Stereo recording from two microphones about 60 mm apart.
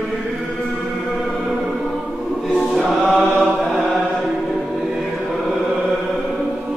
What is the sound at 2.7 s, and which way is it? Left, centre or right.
Choir, centre.